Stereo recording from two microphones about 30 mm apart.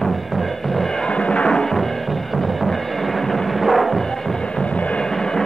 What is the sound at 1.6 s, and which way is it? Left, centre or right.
Music, centre.